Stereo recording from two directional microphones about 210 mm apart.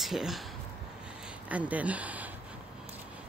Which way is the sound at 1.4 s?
5° right (ahead or behind).